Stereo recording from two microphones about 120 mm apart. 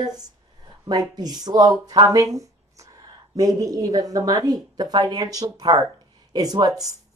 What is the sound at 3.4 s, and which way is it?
A woman's voice, 30° right (ahead or behind).